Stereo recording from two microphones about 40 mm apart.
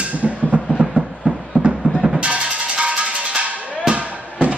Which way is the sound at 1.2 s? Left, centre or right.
Right.